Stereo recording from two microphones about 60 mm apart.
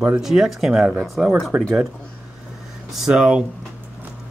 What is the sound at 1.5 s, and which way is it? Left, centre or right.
Speech, right.